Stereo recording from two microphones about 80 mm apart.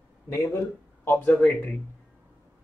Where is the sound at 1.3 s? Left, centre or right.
Centre.